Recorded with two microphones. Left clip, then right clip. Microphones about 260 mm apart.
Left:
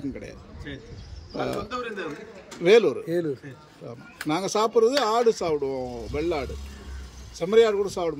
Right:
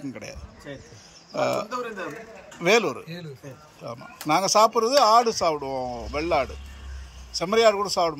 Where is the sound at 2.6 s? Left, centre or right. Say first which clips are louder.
Left 3 dB; centre.